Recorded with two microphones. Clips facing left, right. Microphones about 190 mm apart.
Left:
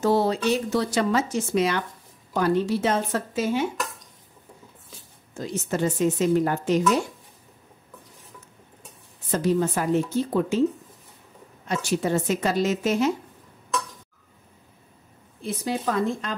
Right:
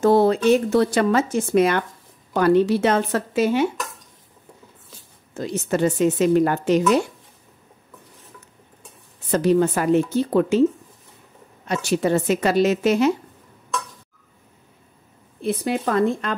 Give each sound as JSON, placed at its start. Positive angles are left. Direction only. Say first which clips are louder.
{"t": 0.0, "sound": "speech", "louder": "right 6 dB", "side_deg": -55}
{"t": 2.3, "sound": "a woman's voice", "louder": "right 6 dB", "side_deg": -65}
{"t": 5.4, "sound": "a woman's voice", "louder": "right 5 dB", "side_deg": -70}
{"t": 9.3, "sound": "a woman's voice", "louder": "right 5 dB", "side_deg": -70}
{"t": 11.6, "sound": "a woman's voice", "louder": "right 4 dB", "side_deg": -70}
{"t": 15.4, "sound": "speech", "louder": "right 4 dB", "side_deg": -60}